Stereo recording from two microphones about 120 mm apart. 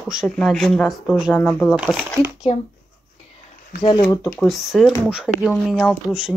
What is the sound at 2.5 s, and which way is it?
Speech, 65° left (ahead or behind).